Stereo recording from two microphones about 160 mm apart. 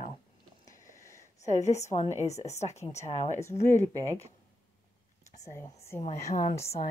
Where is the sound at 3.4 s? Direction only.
15° left (ahead or behind).